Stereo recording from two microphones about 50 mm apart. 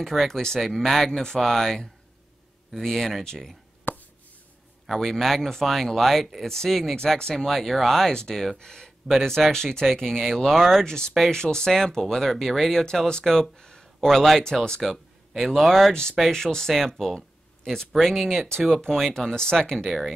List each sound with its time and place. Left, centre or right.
0.0 s speech: centre
3.9 s a sound: left
4.8 s speech: centre
14.8 s speech: centre
15.9 s speech: centre
19.9 s speech: centre